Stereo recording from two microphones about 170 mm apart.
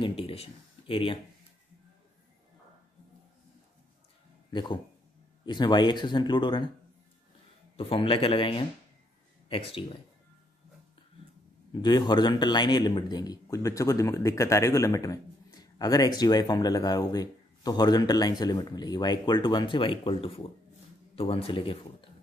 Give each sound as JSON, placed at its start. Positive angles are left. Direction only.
{"t": 0.0, "sound": "a sound", "side_deg": 35}
{"t": 4.5, "sound": "speech", "side_deg": 25}
{"t": 7.7, "sound": "a man's voice", "side_deg": 30}
{"t": 11.8, "sound": "a man's voice", "side_deg": 25}